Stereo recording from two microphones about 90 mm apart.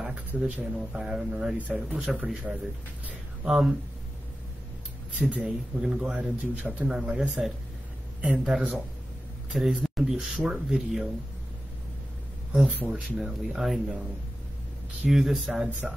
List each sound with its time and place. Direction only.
0.0 s speech: 10° right (ahead or behind)
3.1 s a sound: 10° right (ahead or behind)
5.1 s speech: 10° right (ahead or behind)
7.0 s speech: 5° right (ahead or behind)
12.5 s speech: 5° right (ahead or behind)
15.0 s speech: centre (ahead or behind)